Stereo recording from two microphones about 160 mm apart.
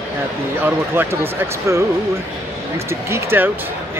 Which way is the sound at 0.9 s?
15° right (ahead or behind).